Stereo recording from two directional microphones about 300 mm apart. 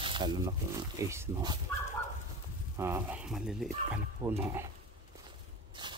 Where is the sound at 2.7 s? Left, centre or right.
Centre.